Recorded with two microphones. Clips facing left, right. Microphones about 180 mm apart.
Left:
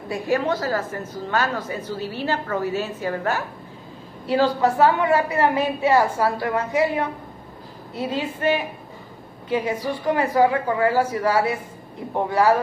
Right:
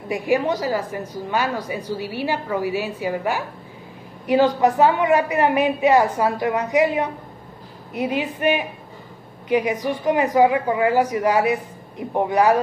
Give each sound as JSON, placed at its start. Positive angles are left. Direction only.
{"t": 0.1, "sound": "a woman's voice", "side_deg": -15}